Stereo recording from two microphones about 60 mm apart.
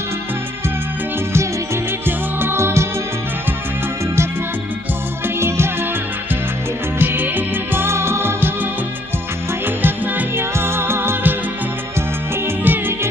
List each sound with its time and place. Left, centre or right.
2.0 s music: right
7.0 s music: right
9.8 s music: right
12.6 s music: right